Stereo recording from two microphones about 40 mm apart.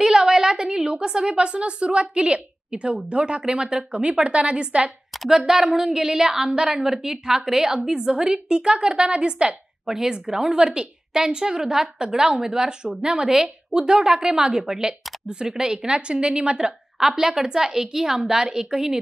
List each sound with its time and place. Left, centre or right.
0.0 s a woman's voice: centre
9.8 s a woman's voice: centre
17.0 s a woman's voice: centre